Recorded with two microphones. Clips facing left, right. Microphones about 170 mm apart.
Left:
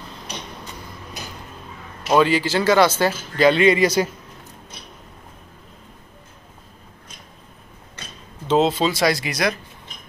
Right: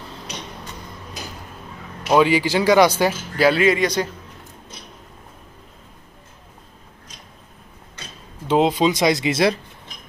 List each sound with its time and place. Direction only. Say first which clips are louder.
2.0 s a man's voice: right 1 dB; 10° right (ahead or behind); by 4.1 s 5° left (ahead or behind)
8.5 s speech: right 1 dB; 10° right (ahead or behind)